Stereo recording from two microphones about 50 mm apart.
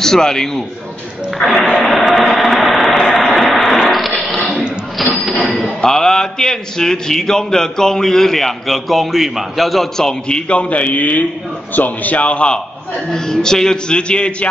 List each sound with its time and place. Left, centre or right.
0.0 s a man's voice: centre
1.4 s a sound: centre
5.0 s cash register: centre
5.8 s a man's voice: centre; by 12.5 s left
13.1 s a man's voice: centre